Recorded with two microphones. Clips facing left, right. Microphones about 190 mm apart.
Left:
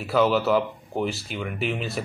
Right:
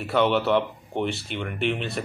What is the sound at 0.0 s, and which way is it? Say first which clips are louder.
Speech: left 1 dB; centre (ahead or behind).